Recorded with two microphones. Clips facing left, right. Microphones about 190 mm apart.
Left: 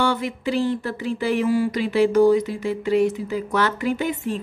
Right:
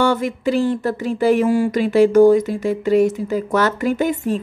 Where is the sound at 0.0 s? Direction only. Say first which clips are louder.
Right 5 dB; 45° right (ahead or behind).